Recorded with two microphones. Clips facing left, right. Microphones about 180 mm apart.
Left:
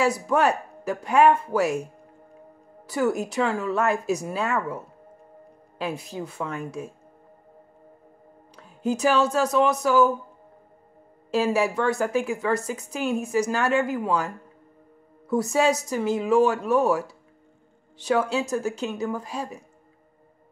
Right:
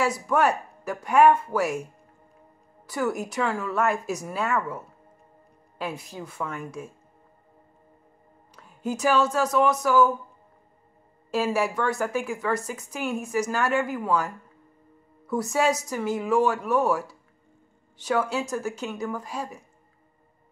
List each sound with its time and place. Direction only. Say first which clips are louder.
0.3 s speech: left 1 dB; 20° left (ahead or behind)
2.9 s speech: left 3 dB; 20° left (ahead or behind)
5.8 s speech: left 3 dB; 25° left (ahead or behind)
8.8 s speech: left 2 dB; 30° left (ahead or behind)
11.5 s speech: left 2 dB; 20° left (ahead or behind)
18.0 s speech: left 2 dB; 25° left (ahead or behind)